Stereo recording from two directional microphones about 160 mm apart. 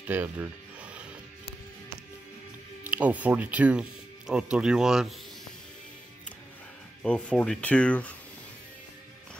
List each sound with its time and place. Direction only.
0.0 s music: 10° right (ahead or behind)
2.9 s speech: 10° right (ahead or behind)
7.0 s speech: 10° left (ahead or behind)